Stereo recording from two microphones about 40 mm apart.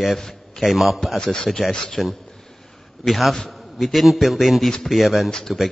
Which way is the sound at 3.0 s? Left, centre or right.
Centre.